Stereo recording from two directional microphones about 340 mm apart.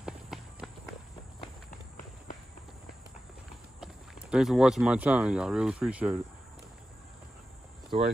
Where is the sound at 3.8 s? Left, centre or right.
Centre.